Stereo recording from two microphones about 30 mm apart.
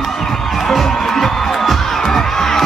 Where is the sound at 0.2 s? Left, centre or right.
Centre.